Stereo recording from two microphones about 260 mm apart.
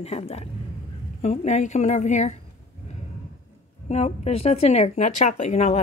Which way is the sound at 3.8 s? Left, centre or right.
Left.